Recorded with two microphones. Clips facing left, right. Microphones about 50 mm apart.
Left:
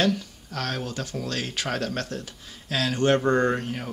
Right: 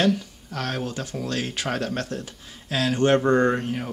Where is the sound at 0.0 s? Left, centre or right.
Centre.